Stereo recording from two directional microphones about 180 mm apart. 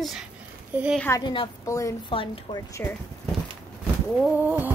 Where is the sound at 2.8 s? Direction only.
10° left (ahead or behind).